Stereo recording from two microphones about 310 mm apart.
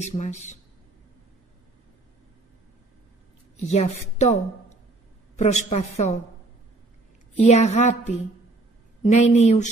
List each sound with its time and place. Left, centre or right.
0.0 s a woman's voice: left
3.5 s a woman's voice: left
7.4 s a woman's voice: left